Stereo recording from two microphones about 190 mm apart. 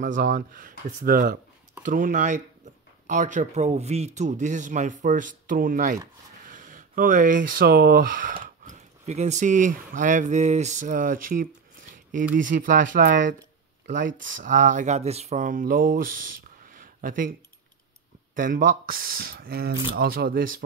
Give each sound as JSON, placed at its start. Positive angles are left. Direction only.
{"t": 0.0, "sound": "speech", "side_deg": -45}
{"t": 18.3, "sound": "speech", "side_deg": -45}